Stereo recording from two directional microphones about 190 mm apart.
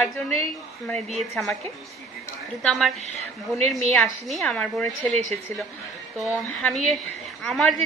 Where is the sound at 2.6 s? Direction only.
Centre (ahead or behind).